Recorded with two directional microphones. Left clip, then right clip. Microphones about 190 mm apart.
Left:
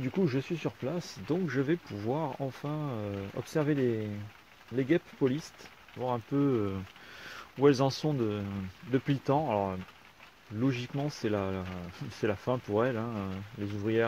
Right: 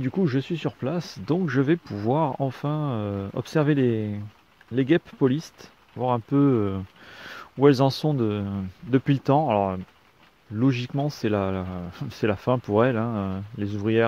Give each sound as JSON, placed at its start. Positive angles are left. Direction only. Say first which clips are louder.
{"t": 0.0, "sound": "speech", "louder": "right 5 dB", "side_deg": -45}